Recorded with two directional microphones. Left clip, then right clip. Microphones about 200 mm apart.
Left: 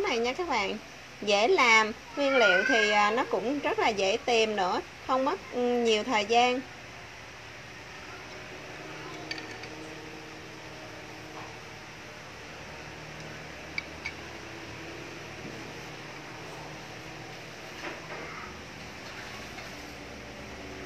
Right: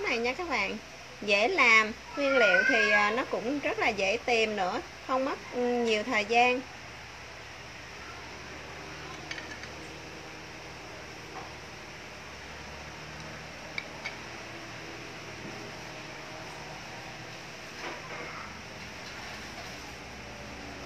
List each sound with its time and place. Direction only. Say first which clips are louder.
0.0 s a child's voice: left 1 dB; 20° left (ahead or behind)